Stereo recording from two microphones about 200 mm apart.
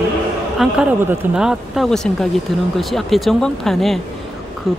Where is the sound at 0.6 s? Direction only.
5° right (ahead or behind).